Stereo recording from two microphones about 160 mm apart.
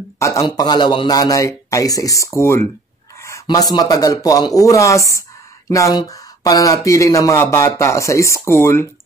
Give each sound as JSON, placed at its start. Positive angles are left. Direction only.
{"t": 0.2, "sound": "speech", "side_deg": 20}